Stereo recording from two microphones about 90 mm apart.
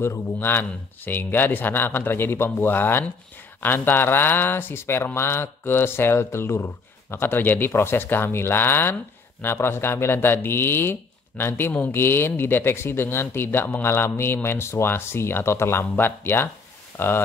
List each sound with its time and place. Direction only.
0.0 s speech: 25° left (ahead or behind)